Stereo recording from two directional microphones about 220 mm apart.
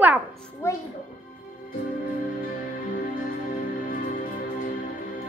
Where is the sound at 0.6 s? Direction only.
10° left (ahead or behind).